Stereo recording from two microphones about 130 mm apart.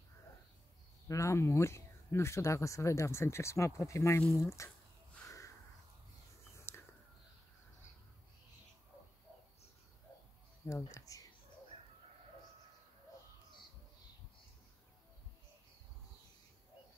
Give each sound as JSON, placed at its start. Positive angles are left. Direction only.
{"t": 1.0, "sound": "speech", "side_deg": 25}
{"t": 6.5, "sound": "a sound", "side_deg": 20}
{"t": 10.9, "sound": "speech", "side_deg": 25}